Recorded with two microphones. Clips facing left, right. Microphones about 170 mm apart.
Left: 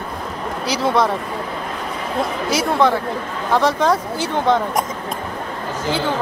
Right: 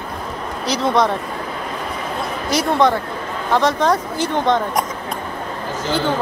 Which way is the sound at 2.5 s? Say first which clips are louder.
Right 2 dB; 5° left (ahead or behind).